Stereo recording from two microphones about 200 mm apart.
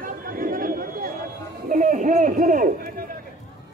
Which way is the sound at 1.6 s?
40° right (ahead or behind).